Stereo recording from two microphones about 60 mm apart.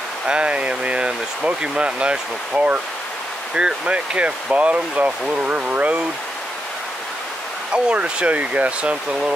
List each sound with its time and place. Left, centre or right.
0.3 s speech: centre
7.7 s speech: centre